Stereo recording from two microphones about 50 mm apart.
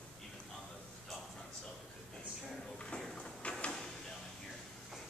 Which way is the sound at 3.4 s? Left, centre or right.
Left.